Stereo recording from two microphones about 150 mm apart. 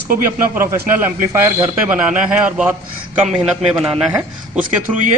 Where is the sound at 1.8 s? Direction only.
5° right (ahead or behind).